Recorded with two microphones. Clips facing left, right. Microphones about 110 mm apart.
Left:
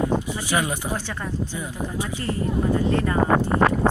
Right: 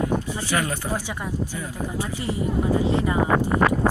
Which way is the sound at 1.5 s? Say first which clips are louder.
Even; 20° left (ahead or behind).